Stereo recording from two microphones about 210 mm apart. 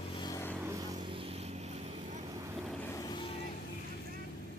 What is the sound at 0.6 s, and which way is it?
Vehicle, 20° right (ahead or behind).